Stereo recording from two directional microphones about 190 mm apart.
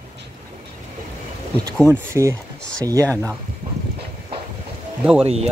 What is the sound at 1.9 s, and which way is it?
Speech, 15° right (ahead or behind).